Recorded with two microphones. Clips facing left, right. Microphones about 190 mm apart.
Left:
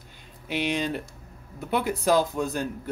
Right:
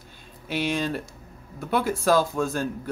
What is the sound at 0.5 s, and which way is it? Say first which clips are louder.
Speech: right 1 dB; 20° left (ahead or behind).